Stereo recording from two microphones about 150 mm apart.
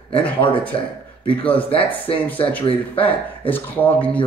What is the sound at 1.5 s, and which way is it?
Speech, 40° left (ahead or behind).